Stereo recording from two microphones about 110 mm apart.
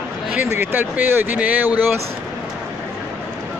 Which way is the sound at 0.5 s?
15° right (ahead or behind).